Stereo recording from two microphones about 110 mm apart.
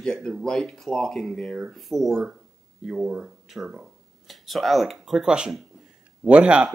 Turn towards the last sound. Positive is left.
turn(degrees=-10)  # may be behind; listen again after turning